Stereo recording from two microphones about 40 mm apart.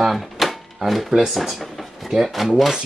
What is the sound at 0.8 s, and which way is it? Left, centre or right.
Speech, centre.